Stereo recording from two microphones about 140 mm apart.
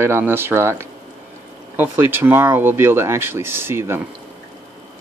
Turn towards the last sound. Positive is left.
turn(degrees=-15)  # may be behind; listen again after turning